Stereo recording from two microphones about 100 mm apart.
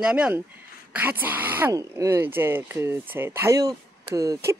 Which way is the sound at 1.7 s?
30° right (ahead or behind).